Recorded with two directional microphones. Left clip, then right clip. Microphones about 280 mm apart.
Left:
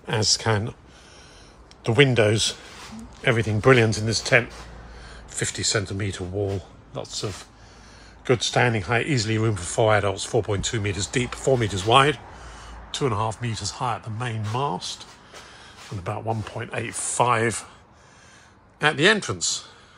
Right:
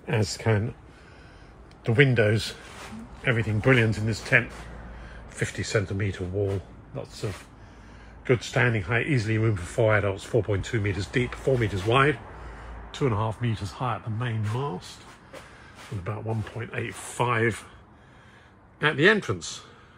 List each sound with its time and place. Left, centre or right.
0.0 s speech: centre
1.8 s speech: centre
16.0 s speech: centre
18.8 s speech: centre